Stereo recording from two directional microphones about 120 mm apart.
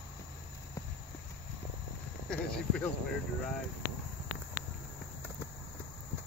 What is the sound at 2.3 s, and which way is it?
Speech, 10° left (ahead or behind).